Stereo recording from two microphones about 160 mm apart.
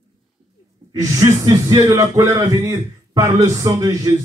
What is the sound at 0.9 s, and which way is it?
Speech, 20° right (ahead or behind).